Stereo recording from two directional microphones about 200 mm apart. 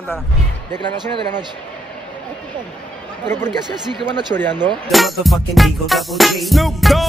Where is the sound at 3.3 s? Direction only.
10° left (ahead or behind).